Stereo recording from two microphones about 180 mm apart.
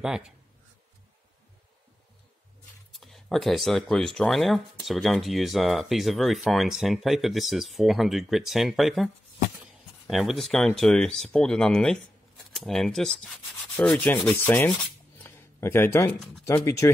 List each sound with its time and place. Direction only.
0.0 s speech: 5° right (ahead or behind)
2.9 s speech: centre (ahead or behind)
13.8 s rub: 10° left (ahead or behind)
15.2 s a sound: 15° left (ahead or behind)
16.4 s rub: 15° left (ahead or behind)